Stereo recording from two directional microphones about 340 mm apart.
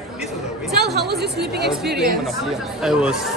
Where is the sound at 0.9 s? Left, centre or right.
Right.